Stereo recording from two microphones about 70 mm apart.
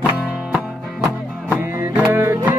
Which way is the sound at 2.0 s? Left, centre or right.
Right.